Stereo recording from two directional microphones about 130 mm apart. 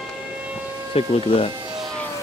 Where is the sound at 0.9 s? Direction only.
50° left (ahead or behind).